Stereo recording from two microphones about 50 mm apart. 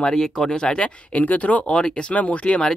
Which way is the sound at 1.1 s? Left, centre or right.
Left.